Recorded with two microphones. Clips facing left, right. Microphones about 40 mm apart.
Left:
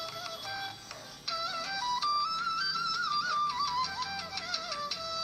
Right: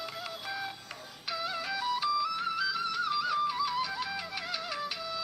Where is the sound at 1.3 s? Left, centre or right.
Centre.